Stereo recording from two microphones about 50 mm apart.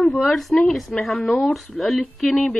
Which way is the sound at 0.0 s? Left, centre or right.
Centre.